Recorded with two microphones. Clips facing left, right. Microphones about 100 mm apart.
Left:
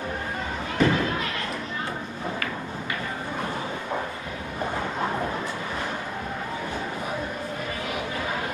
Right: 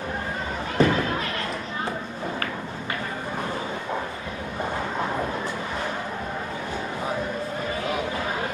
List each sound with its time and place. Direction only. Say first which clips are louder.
0.8 s speech: right 2 dB; 35° right (ahead or behind)